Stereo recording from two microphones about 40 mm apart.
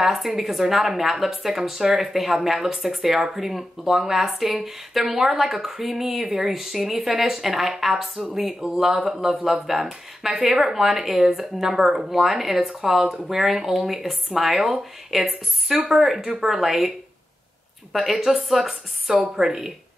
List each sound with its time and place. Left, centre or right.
0.0 s a woman's voice: centre
17.9 s a woman's voice: centre